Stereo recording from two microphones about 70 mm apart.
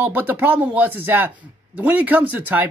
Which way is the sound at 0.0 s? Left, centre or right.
Right.